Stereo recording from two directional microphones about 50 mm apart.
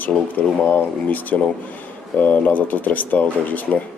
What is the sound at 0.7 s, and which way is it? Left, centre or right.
Speech, left.